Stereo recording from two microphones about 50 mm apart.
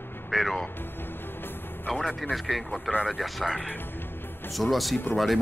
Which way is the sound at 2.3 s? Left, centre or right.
Centre.